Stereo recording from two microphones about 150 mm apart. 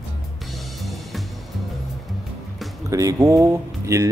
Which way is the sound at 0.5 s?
Centre (ahead or behind).